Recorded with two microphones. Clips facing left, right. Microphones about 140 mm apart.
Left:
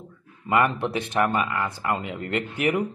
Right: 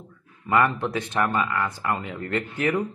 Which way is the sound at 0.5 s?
20° left (ahead or behind).